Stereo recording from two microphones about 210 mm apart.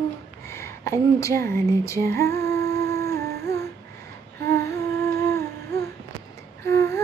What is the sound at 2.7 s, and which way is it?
Humming, 15° left (ahead or behind).